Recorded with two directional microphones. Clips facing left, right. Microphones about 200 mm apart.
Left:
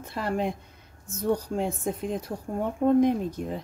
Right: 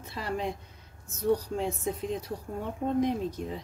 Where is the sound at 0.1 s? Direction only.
55° left (ahead or behind).